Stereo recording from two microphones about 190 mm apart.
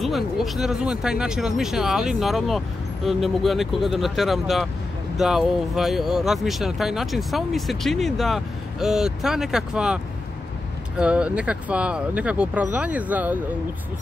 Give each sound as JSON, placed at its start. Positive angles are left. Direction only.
{"t": 0.0, "sound": "speech", "side_deg": 0}
{"t": 11.0, "sound": "speech", "side_deg": -5}